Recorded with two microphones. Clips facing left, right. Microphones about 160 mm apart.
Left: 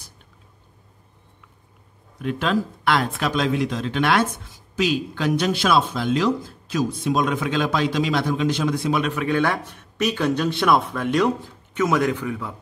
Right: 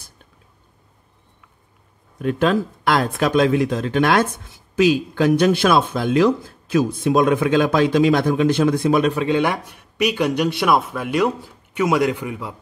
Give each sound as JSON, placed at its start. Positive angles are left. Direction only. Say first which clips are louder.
{"t": 2.2, "sound": "speech", "louder": "right 4 dB", "side_deg": -45}
{"t": 9.1, "sound": "speech", "louder": "right 3 dB", "side_deg": -25}
{"t": 9.4, "sound": "speech", "louder": "right 2 dB", "side_deg": -10}